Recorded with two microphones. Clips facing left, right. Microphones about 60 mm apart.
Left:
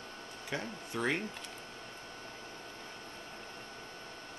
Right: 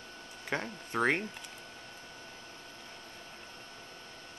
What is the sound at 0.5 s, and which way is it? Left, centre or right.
Speech, right.